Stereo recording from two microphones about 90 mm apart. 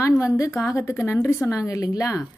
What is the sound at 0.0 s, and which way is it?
Speech, 35° left (ahead or behind).